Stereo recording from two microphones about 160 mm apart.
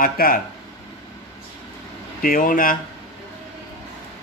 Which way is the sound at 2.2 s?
60° left (ahead or behind).